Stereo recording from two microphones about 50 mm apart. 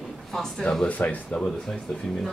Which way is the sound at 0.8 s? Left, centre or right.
Left.